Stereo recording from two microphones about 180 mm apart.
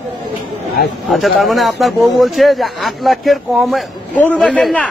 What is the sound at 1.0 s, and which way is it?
A man's voice, centre (ahead or behind).